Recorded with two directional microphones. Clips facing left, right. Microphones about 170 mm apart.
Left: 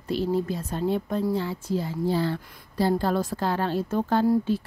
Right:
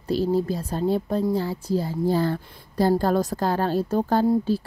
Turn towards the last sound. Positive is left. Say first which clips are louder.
# right 1 dB
turn(degrees=-35)  # may be behind; listen again after turning